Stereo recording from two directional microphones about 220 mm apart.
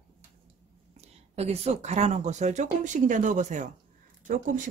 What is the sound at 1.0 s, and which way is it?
Speech, 30° right (ahead or behind).